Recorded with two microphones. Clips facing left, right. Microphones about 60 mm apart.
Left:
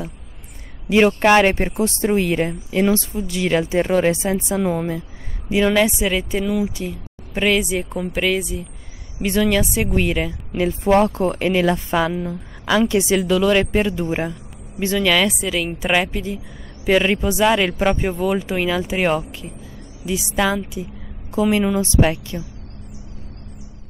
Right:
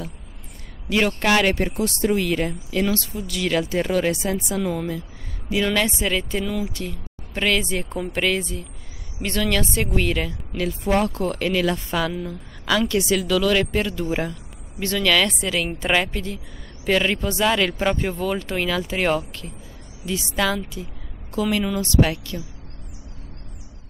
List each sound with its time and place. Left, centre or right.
0.8 s a woman's voice: left